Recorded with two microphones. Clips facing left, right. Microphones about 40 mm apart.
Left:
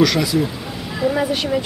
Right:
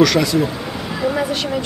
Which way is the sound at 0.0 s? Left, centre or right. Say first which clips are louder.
Right 2 dB; centre.